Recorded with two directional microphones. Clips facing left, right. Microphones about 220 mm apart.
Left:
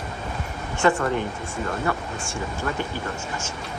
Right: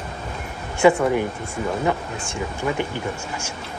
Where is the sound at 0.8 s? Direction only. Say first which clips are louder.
Right 5 dB; 10° right (ahead or behind).